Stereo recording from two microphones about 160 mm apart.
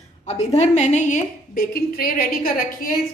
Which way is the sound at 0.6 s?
45° left (ahead or behind).